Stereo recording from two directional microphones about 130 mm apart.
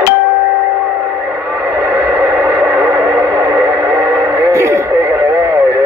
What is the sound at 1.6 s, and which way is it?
Radio, 15° right (ahead or behind).